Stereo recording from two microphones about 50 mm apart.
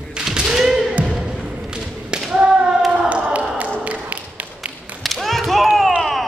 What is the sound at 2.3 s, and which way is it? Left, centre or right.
Thump, centre.